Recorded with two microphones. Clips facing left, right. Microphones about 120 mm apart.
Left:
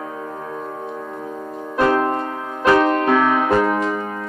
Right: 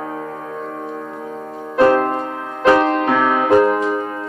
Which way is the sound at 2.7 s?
15° right (ahead or behind).